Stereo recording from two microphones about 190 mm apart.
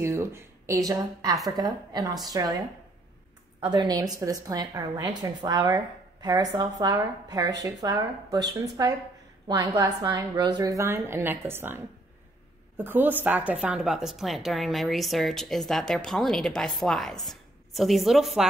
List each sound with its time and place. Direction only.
0.0 s a woman's voice: 15° right (ahead or behind)
3.6 s a woman's voice: 20° right (ahead or behind); by 18.5 s centre (ahead or behind)